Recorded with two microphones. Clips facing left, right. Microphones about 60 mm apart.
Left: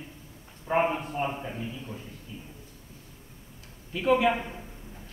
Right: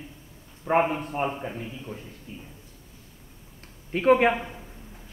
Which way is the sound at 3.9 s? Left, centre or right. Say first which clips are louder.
Right 4 dB; right.